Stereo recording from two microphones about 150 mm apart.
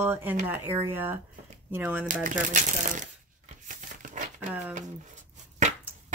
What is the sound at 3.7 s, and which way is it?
Crumpling, 60° right (ahead or behind).